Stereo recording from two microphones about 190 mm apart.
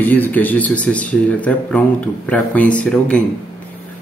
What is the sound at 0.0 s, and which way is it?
Speech, 10° left (ahead or behind).